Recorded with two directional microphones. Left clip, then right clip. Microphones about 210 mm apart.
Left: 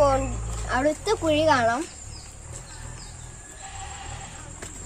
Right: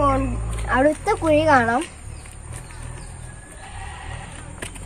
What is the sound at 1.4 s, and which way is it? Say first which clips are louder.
Speech: right 3 dB; 40° right (ahead or behind).